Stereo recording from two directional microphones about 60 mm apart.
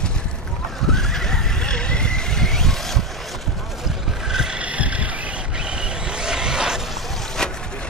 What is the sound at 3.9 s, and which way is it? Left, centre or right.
Vehicle, centre.